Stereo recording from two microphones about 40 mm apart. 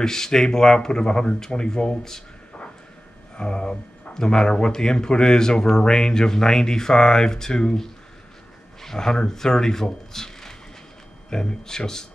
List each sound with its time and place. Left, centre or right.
0.0 s speech: centre
3.3 s speech: left